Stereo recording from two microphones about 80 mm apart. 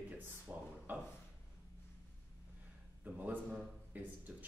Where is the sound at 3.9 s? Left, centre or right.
Right.